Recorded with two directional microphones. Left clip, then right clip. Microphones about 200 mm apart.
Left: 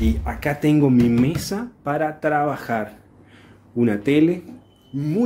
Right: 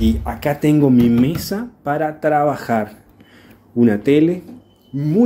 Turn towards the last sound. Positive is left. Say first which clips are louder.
# right 4 dB
turn(degrees=-20)  # may be behind; listen again after turning